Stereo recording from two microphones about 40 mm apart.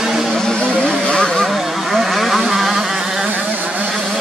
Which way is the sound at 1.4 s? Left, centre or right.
Centre.